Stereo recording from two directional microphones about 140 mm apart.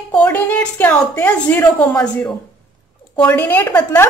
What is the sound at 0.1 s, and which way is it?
A woman's voice, 10° left (ahead or behind).